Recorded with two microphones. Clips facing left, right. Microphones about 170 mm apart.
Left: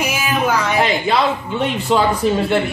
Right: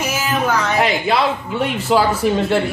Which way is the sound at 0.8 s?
5° right (ahead or behind).